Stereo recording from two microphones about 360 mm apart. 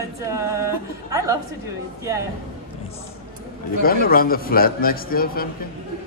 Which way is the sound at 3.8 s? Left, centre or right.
Left.